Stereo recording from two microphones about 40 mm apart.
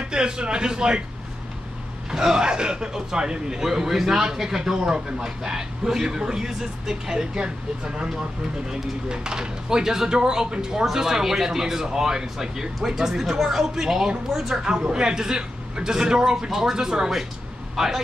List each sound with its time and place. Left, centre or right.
0.0 s a man's voice: right
2.0 s speech: centre